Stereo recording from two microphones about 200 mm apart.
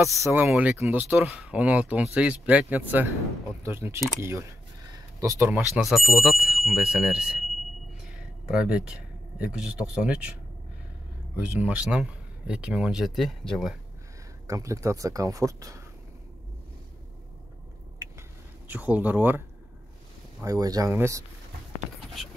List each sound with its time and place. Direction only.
0.0 s speech: 15° right (ahead or behind)
4.9 s a sound: 15° right (ahead or behind)
5.8 s speech: centre (ahead or behind)
11.3 s speech: 5° right (ahead or behind)
14.5 s speech: 15° right (ahead or behind)
18.7 s speech: 10° right (ahead or behind)